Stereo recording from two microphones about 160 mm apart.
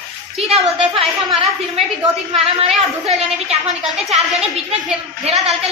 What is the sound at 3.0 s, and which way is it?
A woman's voice, 40° right (ahead or behind).